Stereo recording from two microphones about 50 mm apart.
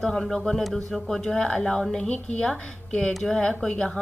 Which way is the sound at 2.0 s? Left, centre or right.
Left.